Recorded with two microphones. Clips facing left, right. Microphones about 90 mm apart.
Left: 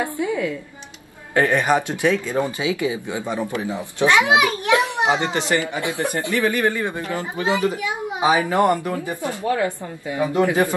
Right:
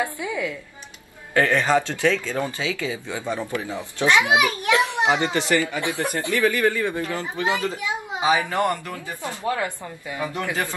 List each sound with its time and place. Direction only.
0.0 s a woman's voice: 30° left (ahead or behind)
1.3 s speech: 20° left (ahead or behind)